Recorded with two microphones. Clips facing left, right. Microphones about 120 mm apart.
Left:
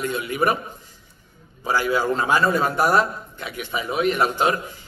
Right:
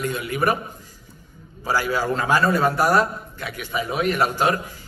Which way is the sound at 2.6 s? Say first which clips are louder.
Right 1 dB; 45° right (ahead or behind).